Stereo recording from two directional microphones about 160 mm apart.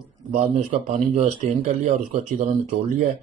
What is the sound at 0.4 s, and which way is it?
A man's voice, 40° right (ahead or behind).